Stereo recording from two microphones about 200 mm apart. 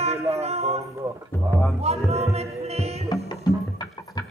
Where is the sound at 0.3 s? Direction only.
30° right (ahead or behind).